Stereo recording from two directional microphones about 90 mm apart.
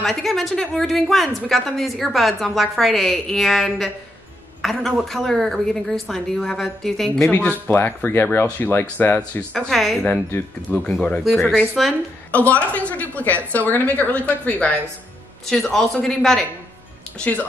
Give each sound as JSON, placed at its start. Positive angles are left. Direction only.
{"t": 0.0, "sound": "a woman's voice", "side_deg": 5}
{"t": 7.3, "sound": "speech", "side_deg": 15}
{"t": 10.0, "sound": "a woman's voice", "side_deg": 15}
{"t": 12.3, "sound": "speech", "side_deg": 15}
{"t": 15.5, "sound": "a woman's voice", "side_deg": 5}